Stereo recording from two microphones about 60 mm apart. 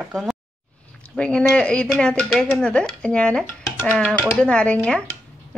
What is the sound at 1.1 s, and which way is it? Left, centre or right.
A woman's voice, centre.